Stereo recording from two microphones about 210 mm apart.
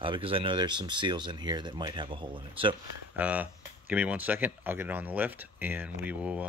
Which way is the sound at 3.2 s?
5° right (ahead or behind).